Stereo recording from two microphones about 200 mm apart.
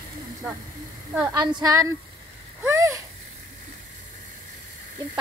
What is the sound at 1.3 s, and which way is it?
Speech, 20° right (ahead or behind).